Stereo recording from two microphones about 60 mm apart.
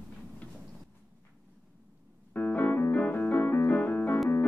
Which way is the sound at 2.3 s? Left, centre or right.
Left.